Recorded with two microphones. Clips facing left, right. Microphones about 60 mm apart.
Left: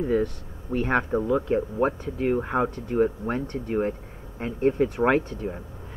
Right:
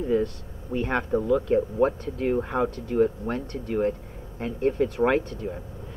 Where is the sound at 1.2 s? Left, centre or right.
Left.